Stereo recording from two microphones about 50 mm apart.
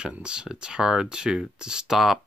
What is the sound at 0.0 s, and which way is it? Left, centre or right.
Speech, centre.